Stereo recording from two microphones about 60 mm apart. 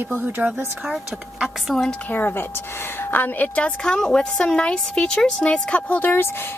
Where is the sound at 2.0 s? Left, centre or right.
Left.